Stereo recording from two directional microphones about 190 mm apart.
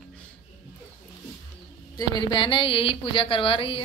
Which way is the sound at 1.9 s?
25° left (ahead or behind).